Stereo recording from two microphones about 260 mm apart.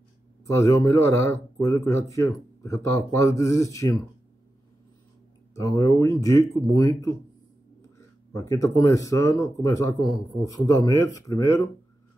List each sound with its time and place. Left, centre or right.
0.5 s a man's voice: centre
5.5 s a man's voice: centre
8.3 s a man's voice: centre